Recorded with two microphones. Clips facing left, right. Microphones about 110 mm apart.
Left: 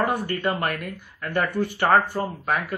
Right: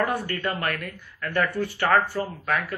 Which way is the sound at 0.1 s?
15° left (ahead or behind).